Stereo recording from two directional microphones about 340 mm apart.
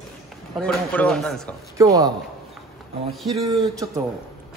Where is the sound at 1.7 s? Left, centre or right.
Centre.